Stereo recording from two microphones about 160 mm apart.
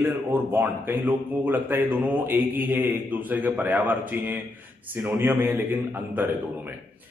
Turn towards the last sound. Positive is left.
turn(degrees=-10)  # may be behind; listen again after turning